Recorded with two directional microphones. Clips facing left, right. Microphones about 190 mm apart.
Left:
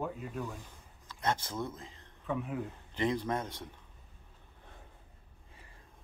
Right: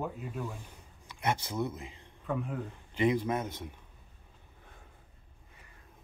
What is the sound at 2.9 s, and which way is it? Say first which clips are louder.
Speech: right 4 dB; 10° right (ahead or behind).